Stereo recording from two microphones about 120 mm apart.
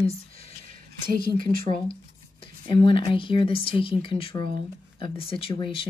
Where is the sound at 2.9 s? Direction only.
45° left (ahead or behind).